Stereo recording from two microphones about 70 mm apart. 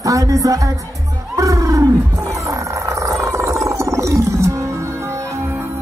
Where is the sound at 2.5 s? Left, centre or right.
Right.